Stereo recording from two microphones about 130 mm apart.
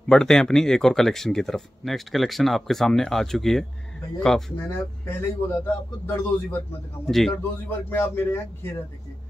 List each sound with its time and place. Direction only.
0.1 s speech: 5° left (ahead or behind)
5.0 s a man's voice: 20° left (ahead or behind)
7.1 s speech: centre (ahead or behind)
7.6 s a man's voice: 15° left (ahead or behind)